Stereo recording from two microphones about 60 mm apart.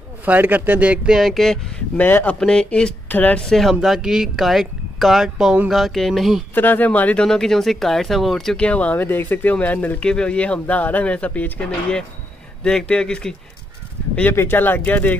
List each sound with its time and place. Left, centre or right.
0.2 s speech: right
1.1 s speech: centre
2.0 s speech: left
2.4 s speech: centre
3.1 s speech: left
3.3 s speech: centre
3.8 s speech: centre
6.5 s speech: left
7.2 s speech: centre
8.5 s speech: left
8.9 s speech: left
10.0 s speech: centre
12.6 s speech: centre
14.3 s speech: left